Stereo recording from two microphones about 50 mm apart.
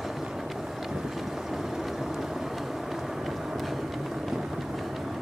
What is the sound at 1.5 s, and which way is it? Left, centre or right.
Vehicle, centre.